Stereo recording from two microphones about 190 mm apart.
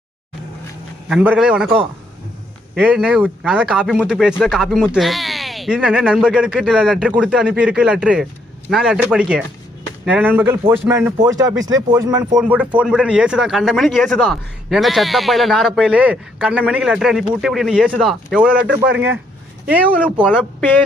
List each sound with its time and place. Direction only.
1.0 s speech: 5° right (ahead or behind)
12.4 s speech: 10° right (ahead or behind)
20.2 s speech: 10° left (ahead or behind)